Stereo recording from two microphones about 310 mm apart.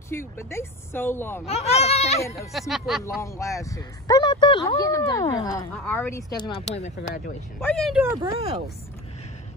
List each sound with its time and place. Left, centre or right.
0.1 s speech: centre
1.4 s speech: centre
2.2 s speech: centre
2.7 s speech: centre
3.3 s speech: centre; by 7.3 s left
7.6 s speech: centre
8.2 s speech: centre